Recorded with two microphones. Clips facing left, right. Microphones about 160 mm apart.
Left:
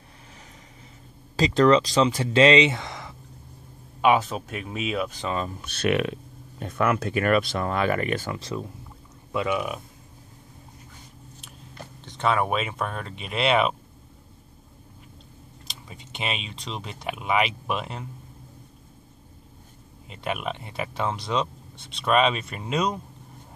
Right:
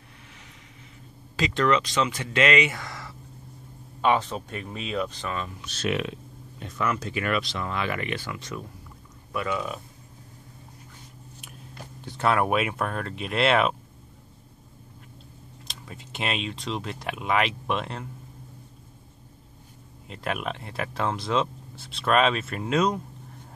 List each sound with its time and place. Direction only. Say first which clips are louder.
1.3 s speech: left 5 dB; 35° left (ahead or behind); by 3.2 s 20° left (ahead or behind)
4.0 s speech: left 3 dB; 10° left (ahead or behind)
5.6 s speech: left 4 dB; 60° left (ahead or behind); by 8.6 s 30° left (ahead or behind)
9.3 s speech: left 3 dB; 20° left (ahead or behind)
12.0 s speech: even; 5° right (ahead or behind)
15.6 s speech: right 2 dB; centre (ahead or behind)
20.1 s speech: left 1 dB; centre (ahead or behind)